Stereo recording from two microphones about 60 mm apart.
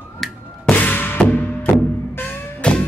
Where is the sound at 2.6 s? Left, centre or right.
Centre.